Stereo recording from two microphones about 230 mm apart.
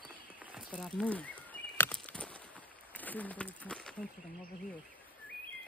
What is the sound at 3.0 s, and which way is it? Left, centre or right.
Speech, centre.